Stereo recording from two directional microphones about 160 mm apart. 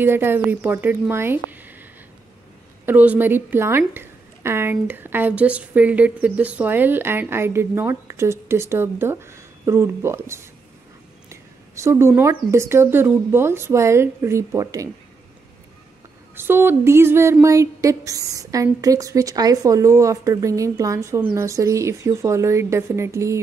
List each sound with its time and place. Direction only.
0.0 s a woman's voice: 15° right (ahead or behind)
16.3 s speech: 15° right (ahead or behind)